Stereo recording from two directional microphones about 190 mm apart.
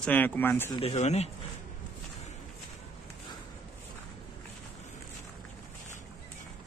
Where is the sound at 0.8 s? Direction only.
35° left (ahead or behind).